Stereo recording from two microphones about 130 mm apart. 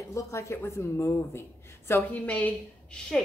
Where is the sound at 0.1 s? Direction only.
20° left (ahead or behind).